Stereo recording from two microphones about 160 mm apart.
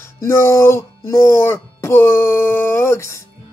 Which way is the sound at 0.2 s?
15° left (ahead or behind).